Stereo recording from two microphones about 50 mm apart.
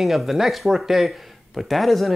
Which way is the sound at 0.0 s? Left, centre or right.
Centre.